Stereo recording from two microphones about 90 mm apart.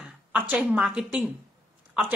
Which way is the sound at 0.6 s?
5° right (ahead or behind).